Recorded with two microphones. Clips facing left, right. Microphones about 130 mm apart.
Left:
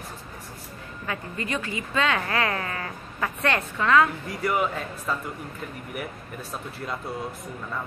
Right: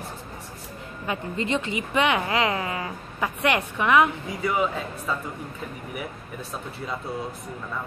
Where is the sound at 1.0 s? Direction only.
25° right (ahead or behind).